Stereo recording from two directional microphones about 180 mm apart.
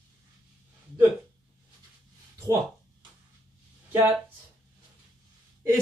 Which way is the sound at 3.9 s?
10° right (ahead or behind).